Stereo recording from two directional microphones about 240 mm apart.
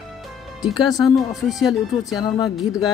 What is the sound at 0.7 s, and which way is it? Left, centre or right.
Speech, centre.